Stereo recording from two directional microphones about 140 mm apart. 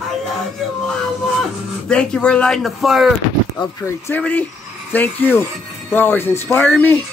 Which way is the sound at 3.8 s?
10° left (ahead or behind).